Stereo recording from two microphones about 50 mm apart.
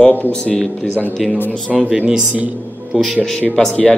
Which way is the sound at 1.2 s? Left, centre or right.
Centre.